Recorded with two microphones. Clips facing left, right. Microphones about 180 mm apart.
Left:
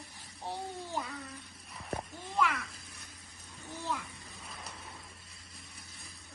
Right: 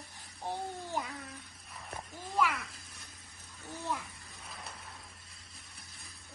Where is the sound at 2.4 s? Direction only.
Centre (ahead or behind).